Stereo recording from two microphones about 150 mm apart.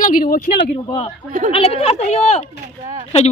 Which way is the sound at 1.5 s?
40° left (ahead or behind).